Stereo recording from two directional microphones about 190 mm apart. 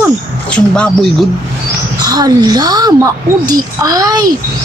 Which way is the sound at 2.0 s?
20° right (ahead or behind).